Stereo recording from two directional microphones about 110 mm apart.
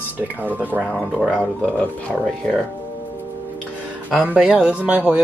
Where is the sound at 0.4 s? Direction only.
15° right (ahead or behind).